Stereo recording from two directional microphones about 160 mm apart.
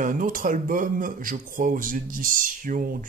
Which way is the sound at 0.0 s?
55° right (ahead or behind).